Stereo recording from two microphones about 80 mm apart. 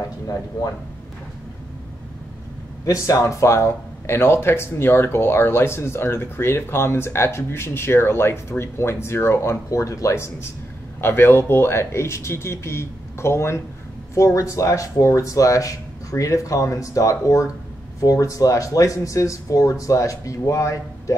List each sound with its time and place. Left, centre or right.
2.8 s speech: left